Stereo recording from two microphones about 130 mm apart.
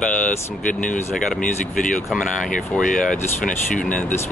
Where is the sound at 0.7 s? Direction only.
80° left.